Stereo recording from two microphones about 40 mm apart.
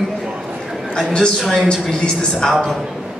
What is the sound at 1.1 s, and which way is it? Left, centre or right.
Speech, centre.